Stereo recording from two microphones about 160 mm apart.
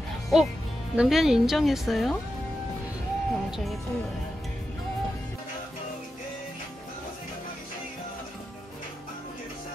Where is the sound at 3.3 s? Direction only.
Centre (ahead or behind).